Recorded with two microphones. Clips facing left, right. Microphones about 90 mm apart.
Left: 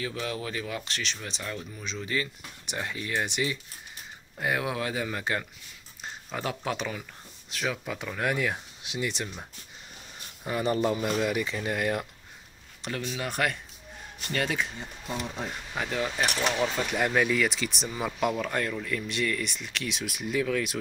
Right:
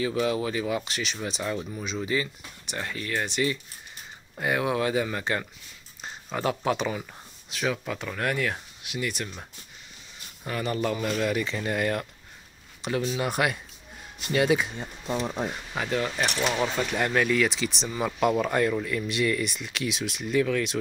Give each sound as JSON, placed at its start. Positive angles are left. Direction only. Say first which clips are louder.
{"t": 0.0, "sound": "speech", "louder": "right 7 dB", "side_deg": -10}
{"t": 2.6, "sound": "speech", "louder": "right 1 dB", "side_deg": 15}
{"t": 4.4, "sound": "speech", "louder": "right 4 dB", "side_deg": 0}
{"t": 8.1, "sound": "speech", "louder": "even", "side_deg": 10}
{"t": 8.8, "sound": "speech", "louder": "right 1 dB", "side_deg": 25}
{"t": 10.6, "sound": "speech", "louder": "left 1 dB", "side_deg": 20}
{"t": 12.8, "sound": "speech", "louder": "right 6 dB", "side_deg": -5}
{"t": 15.0, "sound": "speech", "louder": "right 5 dB", "side_deg": -30}
{"t": 15.4, "sound": "speech", "louder": "right 3 dB", "side_deg": -5}
{"t": 20.1, "sound": "speech", "louder": "right 3 dB", "side_deg": 5}